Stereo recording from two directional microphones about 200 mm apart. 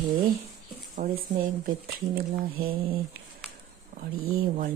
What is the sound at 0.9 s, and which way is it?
Speech, 45° right (ahead or behind).